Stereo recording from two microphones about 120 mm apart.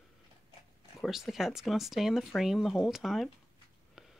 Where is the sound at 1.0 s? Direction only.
Centre (ahead or behind).